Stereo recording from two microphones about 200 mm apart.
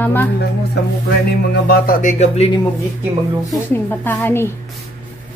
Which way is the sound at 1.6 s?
40° left (ahead or behind).